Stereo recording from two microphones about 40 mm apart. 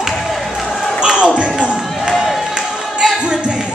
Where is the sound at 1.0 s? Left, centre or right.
Right.